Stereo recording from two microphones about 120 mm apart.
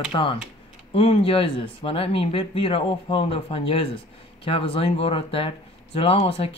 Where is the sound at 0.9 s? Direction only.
55° left (ahead or behind).